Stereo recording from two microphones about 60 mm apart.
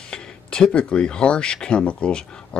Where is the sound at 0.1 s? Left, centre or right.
Centre.